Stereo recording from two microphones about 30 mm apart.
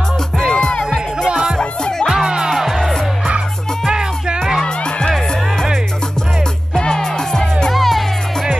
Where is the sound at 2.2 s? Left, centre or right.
Right.